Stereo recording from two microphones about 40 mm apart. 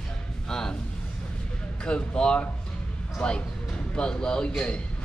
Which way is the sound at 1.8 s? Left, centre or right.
Left.